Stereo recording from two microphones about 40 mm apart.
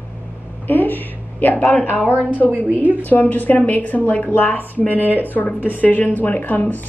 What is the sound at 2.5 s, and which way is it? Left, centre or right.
Speech, right.